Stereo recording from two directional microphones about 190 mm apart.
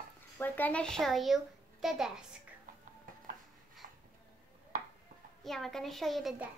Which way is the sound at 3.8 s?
45° right (ahead or behind).